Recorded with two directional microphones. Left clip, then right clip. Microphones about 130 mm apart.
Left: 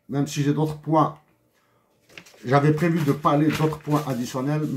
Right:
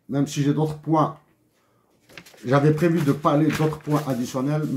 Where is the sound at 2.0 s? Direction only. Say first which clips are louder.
Right 1 dB; 40° right (ahead or behind).